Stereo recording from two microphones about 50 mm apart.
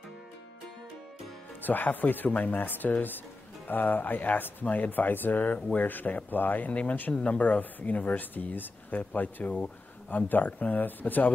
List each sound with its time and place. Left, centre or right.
1.6 s speech: left
6.7 s speech: left